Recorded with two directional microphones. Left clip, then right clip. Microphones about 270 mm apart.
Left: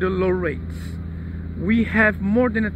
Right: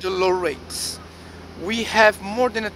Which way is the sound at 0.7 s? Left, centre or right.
Right.